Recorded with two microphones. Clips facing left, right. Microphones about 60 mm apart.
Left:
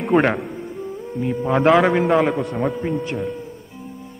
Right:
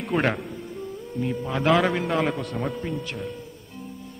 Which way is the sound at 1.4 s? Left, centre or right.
Left.